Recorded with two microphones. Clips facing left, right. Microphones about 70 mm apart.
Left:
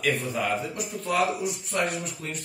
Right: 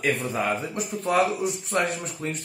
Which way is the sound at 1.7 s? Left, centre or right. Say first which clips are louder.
Right 2 dB; right.